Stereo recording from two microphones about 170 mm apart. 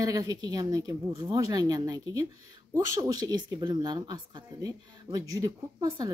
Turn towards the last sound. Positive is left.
turn(degrees=-20)  # may be behind; listen again after turning